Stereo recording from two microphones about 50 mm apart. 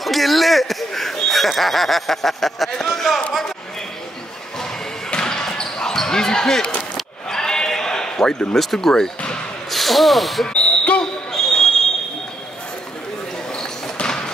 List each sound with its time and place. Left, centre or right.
0.0 s a sound: centre
5.1 s basketball bounce: centre
7.2 s bleat: centre
8.5 s speech: centre
10.4 s basketball bounce: left
11.3 s a sound: centre
13.5 s basketball bounce: centre